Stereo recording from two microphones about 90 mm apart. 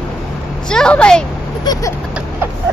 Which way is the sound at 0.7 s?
10° left (ahead or behind).